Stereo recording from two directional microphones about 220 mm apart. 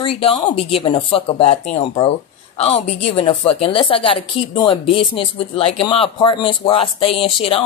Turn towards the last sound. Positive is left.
turn(degrees=25)  # may be behind; listen again after turning